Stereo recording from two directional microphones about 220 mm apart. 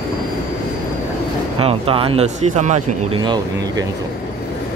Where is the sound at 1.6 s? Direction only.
25° right (ahead or behind).